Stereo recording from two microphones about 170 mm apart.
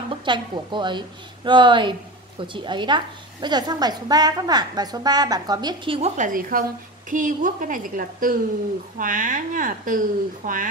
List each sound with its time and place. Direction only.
0.1 s a woman's voice: 30° right (ahead or behind)
6.1 s a woman's voice: 50° right (ahead or behind)